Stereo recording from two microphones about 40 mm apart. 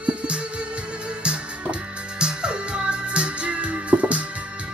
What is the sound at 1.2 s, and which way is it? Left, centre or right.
Music, right.